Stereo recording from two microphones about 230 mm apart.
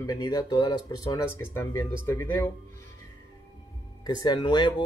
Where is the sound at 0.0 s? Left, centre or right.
Centre.